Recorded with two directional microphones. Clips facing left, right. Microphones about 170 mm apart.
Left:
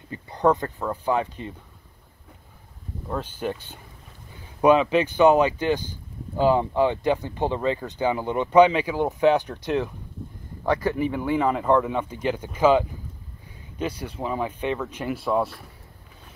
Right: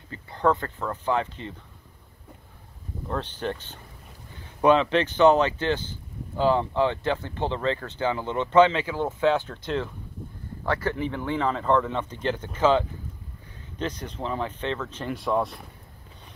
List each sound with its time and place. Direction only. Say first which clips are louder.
0.1 s speech: left 3 dB; 20° left (ahead or behind)
3.1 s speech: left 1 dB; 10° left (ahead or behind)